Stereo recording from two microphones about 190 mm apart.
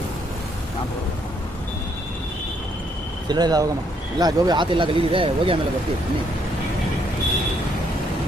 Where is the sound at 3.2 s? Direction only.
20° right (ahead or behind).